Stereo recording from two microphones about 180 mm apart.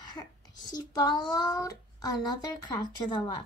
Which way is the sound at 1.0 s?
25° left (ahead or behind).